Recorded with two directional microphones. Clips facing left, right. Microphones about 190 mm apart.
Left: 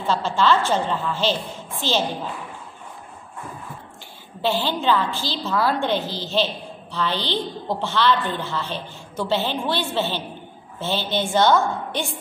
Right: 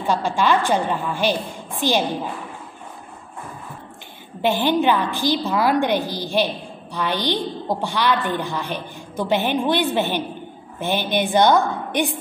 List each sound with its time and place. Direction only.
0.0 s a woman's voice: 15° right (ahead or behind)
4.4 s a woman's voice: 15° right (ahead or behind)